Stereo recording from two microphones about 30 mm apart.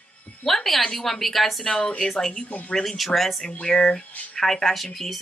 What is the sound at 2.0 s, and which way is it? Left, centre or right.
Speech, centre.